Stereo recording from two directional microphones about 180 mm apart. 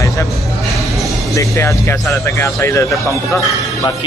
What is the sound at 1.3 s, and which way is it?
Speech, 15° left (ahead or behind).